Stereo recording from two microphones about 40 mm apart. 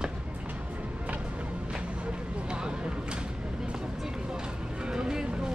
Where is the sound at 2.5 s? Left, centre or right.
Right.